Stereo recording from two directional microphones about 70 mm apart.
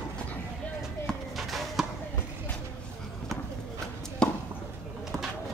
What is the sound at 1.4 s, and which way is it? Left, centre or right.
Basketball bounce, centre.